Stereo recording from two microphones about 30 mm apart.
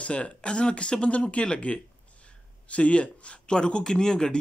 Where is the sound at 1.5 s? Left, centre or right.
Left.